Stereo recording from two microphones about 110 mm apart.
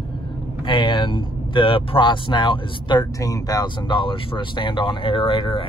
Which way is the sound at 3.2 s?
35° left (ahead or behind).